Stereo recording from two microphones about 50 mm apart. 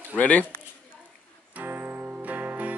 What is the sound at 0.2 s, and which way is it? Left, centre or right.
Speech, left.